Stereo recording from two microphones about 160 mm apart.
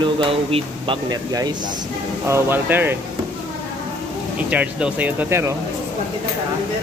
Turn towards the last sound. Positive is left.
turn(degrees=-10)  # may be behind; listen again after turning